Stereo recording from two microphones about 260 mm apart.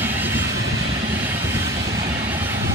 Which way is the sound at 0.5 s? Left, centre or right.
Right.